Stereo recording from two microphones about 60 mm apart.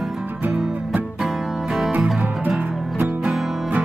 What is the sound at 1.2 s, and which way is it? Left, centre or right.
Music, centre.